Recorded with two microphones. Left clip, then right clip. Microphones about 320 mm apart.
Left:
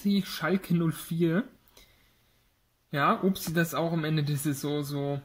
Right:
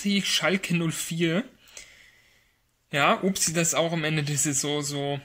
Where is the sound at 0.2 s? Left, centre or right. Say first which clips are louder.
Right 6 dB; right.